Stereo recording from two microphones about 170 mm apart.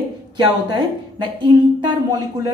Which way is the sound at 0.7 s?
25° right (ahead or behind).